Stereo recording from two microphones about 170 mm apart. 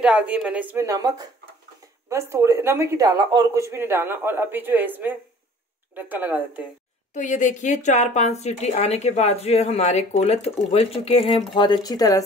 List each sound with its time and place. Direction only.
0.0 s speech: 5° right (ahead or behind)
7.2 s speech: 45° left (ahead or behind); by 12.2 s 20° left (ahead or behind)